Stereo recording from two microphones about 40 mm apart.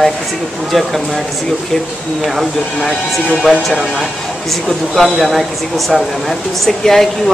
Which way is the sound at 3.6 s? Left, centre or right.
Centre.